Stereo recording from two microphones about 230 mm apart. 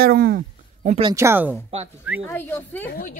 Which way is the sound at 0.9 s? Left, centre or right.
Right.